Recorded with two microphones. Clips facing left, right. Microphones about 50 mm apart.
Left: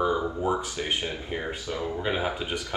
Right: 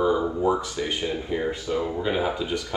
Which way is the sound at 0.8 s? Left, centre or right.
Left.